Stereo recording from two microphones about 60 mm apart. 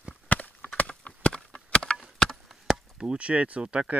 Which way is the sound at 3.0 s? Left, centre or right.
Centre.